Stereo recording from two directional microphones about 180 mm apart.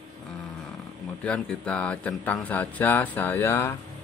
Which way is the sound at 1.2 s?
5° left (ahead or behind).